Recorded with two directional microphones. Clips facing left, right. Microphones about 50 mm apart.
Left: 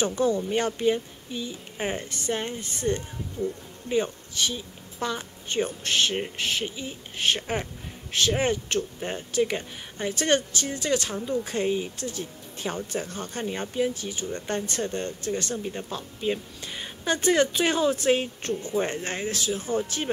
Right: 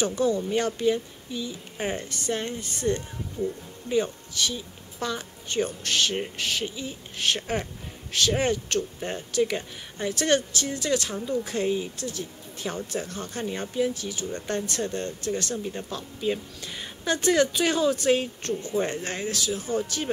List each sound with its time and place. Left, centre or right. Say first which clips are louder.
0.0 s speech: even; left
13.5 s speech: even; centre